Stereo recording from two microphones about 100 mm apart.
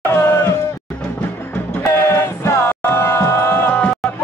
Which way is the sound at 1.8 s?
25° left (ahead or behind).